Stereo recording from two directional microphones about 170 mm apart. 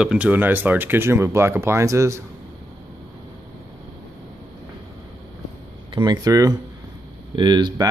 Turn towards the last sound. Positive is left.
turn(degrees=-25)  # may be behind; listen again after turning